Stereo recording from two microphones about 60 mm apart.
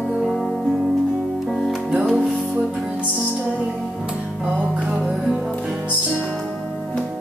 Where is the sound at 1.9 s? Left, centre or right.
Centre.